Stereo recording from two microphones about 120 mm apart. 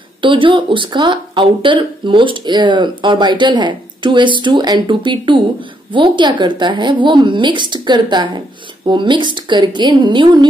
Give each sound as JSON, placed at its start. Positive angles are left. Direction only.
{"t": 0.2, "sound": "speech", "side_deg": -45}